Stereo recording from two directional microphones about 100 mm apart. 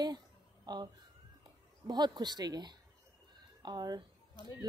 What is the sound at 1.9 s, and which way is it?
Speech, 45° right (ahead or behind).